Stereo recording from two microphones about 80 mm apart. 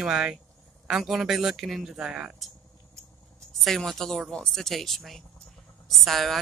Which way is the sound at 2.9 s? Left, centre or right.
Right.